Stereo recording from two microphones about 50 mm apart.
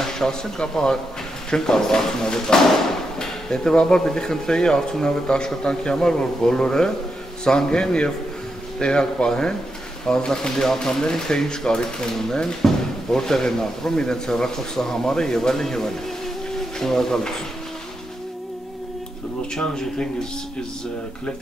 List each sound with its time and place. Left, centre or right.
0.0 s speech: centre
19.5 s speech: centre